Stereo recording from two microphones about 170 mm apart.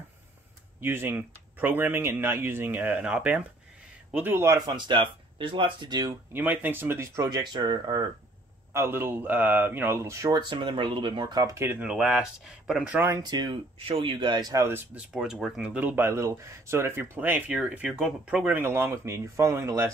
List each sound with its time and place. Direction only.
0.7 s speech: 15° right (ahead or behind)
6.3 s speech: 10° right (ahead or behind); by 8.0 s 25° right (ahead or behind)
8.7 s speech: 15° right (ahead or behind)
13.2 s speech: 25° right (ahead or behind)
15.0 s speech: 5° right (ahead or behind)